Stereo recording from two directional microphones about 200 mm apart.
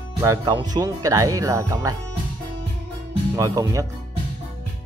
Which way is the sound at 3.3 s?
15° right (ahead or behind).